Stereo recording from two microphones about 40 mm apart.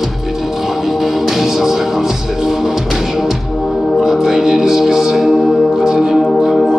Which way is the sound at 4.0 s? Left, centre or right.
Centre.